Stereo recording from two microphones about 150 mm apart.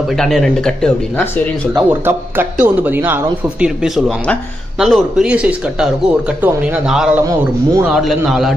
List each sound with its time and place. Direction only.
0.2 s speech: 5° left (ahead or behind)
1.7 s speech: 15° right (ahead or behind)